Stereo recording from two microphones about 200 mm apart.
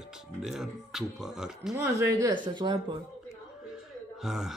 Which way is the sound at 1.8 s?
15° right (ahead or behind).